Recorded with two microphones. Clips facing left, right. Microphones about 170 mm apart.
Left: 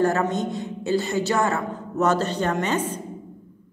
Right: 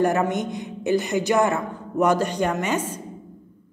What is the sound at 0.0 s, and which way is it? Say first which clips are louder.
A woman's voice: right 1 dB; 15° right (ahead or behind).